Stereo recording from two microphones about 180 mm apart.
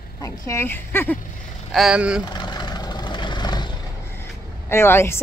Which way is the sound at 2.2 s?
25° left (ahead or behind).